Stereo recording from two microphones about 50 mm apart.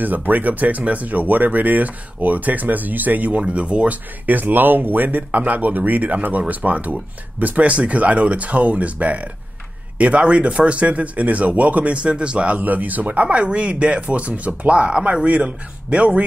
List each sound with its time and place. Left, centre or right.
0.0 s speech: right
12.5 s speech: right